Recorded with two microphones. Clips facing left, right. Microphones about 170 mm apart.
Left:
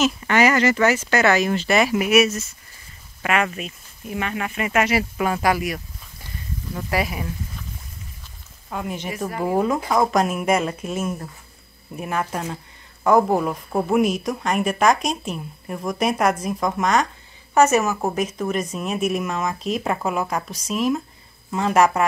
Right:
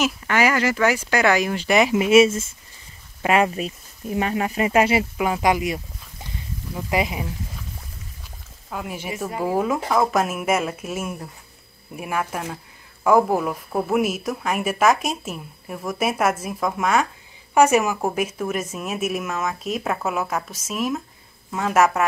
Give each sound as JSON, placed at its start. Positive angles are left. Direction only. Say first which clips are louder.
{"t": 0.0, "sound": "speech", "louder": "left 2 dB", "side_deg": -10}
{"t": 5.1, "sound": "speech", "louder": "even", "side_deg": -10}
{"t": 8.6, "sound": "speech", "louder": "left 2 dB", "side_deg": -5}